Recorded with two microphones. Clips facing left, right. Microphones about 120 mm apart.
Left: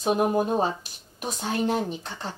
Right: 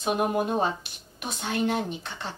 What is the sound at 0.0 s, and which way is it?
Speech, 35° left (ahead or behind).